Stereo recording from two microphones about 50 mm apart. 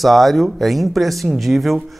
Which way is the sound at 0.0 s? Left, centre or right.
Centre.